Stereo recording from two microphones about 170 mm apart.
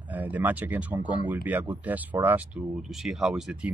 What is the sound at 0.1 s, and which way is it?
Speech, 10° right (ahead or behind).